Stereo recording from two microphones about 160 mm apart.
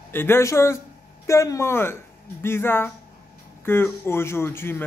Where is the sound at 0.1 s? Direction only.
15° left (ahead or behind).